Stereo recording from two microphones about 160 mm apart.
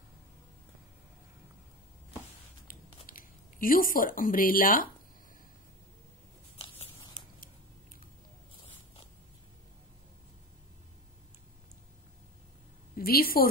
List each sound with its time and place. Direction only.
3.1 s speech: 60° left (ahead or behind)
6.6 s a sound: 35° left (ahead or behind)
12.9 s a woman's voice: 65° left (ahead or behind)